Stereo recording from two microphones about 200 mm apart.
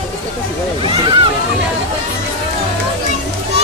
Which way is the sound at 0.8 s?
25° right (ahead or behind).